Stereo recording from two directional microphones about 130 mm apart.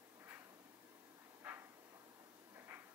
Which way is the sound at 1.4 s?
10° right (ahead or behind).